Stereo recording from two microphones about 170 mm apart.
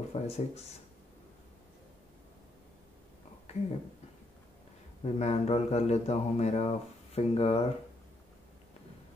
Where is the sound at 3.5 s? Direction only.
40° left (ahead or behind).